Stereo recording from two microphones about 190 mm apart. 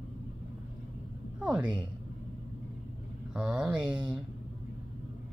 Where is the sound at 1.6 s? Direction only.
25° right (ahead or behind).